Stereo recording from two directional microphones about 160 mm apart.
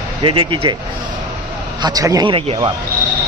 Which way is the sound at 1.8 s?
25° right (ahead or behind).